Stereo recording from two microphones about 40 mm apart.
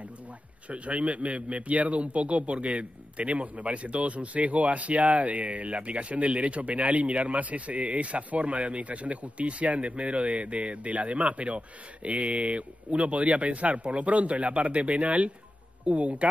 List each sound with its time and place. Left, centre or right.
0.7 s a man's voice: right